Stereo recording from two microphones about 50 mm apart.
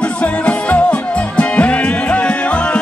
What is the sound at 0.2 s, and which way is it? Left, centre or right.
Music, left.